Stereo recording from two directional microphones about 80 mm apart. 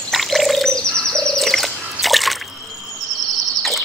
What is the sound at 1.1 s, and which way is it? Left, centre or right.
Water, centre.